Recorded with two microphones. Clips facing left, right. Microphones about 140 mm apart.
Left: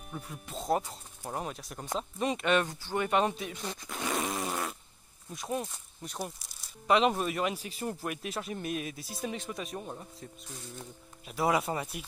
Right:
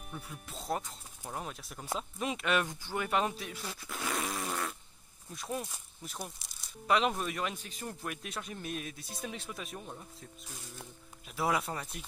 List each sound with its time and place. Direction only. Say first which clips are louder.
0.1 s speech: left 4 dB; centre (ahead or behind)
3.6 s speech: left 4 dB; 15° left (ahead or behind)
3.9 s fart: left 3 dB; centre (ahead or behind)
4.2 s fart: left 3 dB; 25° left (ahead or behind)
5.3 s speech: left 4 dB; centre (ahead or behind)
9.8 s speech: left 5 dB; 15° left (ahead or behind)
10.8 s speech: left 3 dB; centre (ahead or behind)